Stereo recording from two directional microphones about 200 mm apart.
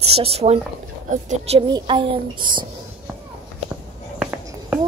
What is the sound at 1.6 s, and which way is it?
Speech, 25° right (ahead or behind).